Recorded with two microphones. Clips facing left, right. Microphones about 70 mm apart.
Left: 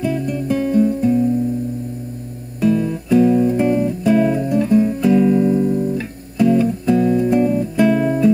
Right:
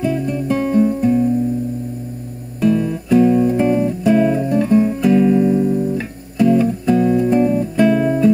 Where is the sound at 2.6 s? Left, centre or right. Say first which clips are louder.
Right 1 dB; centre.